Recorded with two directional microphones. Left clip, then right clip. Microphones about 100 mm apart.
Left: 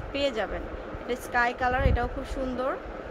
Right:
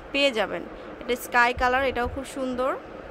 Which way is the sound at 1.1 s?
55° right (ahead or behind).